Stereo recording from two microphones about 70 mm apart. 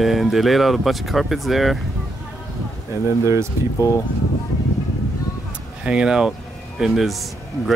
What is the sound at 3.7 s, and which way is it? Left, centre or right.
Speech, left.